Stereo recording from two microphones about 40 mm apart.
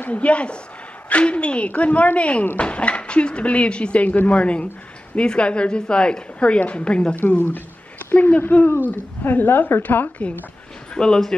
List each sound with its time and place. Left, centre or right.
0.1 s a woman's voice: left
7.2 s speech: left
8.9 s a woman's voice: left
9.8 s speech: left
11.0 s speech: centre